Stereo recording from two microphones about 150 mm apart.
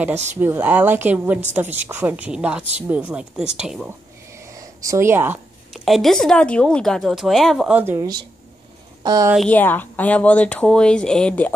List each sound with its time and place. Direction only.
0.1 s speech: 50° right (ahead or behind)
0.4 s a woman's voice: 10° right (ahead or behind)
4.4 s a sound: 20° right (ahead or behind)
5.7 s speech: centre (ahead or behind)
7.8 s a woman's voice: 15° right (ahead or behind)
9.5 s speech: 10° left (ahead or behind)